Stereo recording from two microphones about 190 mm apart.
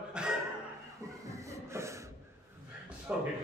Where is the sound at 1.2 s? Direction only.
15° right (ahead or behind).